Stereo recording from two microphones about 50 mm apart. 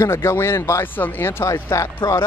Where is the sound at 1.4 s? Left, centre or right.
Left.